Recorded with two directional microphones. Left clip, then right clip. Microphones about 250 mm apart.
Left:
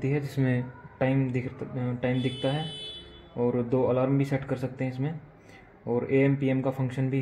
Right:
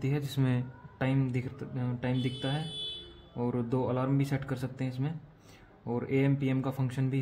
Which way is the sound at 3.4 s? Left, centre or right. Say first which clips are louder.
Left 7 dB; right.